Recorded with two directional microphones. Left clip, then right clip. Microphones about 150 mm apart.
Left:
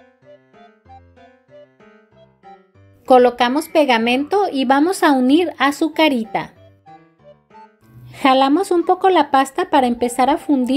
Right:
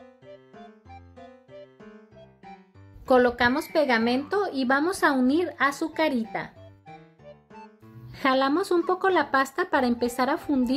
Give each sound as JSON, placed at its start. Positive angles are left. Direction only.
{"t": 3.1, "sound": "a woman's voice", "side_deg": 20}
{"t": 8.1, "sound": "speech", "side_deg": 15}